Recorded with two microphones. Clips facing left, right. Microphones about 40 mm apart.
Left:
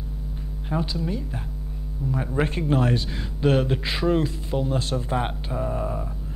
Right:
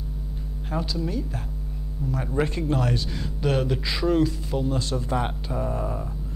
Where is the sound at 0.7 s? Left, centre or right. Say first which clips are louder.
Left 2 dB; centre; by 4.9 s left.